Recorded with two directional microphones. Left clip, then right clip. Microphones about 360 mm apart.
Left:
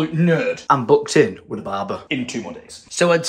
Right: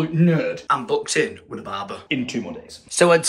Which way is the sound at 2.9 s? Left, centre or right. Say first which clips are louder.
Right 1 dB; centre.